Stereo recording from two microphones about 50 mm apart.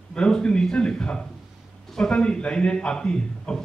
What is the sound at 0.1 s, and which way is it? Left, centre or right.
A man's voice, centre.